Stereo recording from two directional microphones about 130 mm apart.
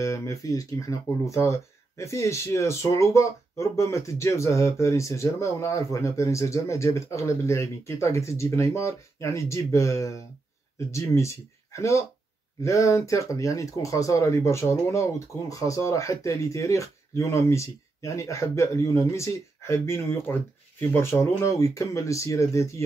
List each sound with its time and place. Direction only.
0.0 s speech: 25° left (ahead or behind)